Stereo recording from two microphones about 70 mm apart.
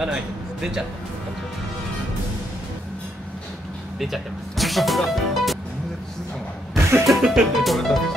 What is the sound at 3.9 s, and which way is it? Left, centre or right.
Speech, centre.